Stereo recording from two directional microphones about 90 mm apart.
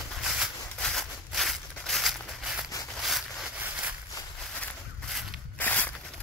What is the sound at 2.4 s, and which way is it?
Walk, 5° right (ahead or behind).